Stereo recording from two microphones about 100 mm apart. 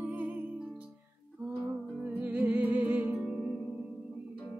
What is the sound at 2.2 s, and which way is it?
Music, 15° right (ahead or behind).